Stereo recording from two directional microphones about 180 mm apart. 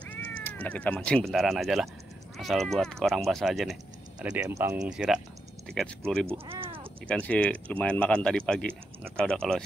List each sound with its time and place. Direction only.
0.1 s speech: 10° left (ahead or behind)
4.4 s speech: 15° right (ahead or behind)
4.8 s speech: 5° right (ahead or behind)
6.4 s a sound: 30° right (ahead or behind)
7.1 s speech: 5° left (ahead or behind)